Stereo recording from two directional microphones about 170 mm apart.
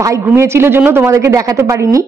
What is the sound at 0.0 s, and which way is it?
A woman's voice, 15° right (ahead or behind).